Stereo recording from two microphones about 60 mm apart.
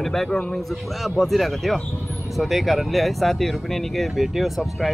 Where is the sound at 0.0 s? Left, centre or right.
Centre.